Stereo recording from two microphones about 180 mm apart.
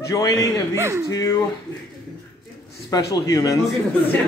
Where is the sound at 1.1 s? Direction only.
20° left (ahead or behind).